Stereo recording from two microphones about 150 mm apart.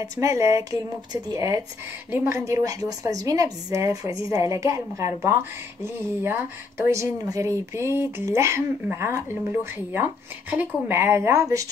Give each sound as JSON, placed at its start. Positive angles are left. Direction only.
{"t": 0.0, "sound": "a woman's voice", "side_deg": -20}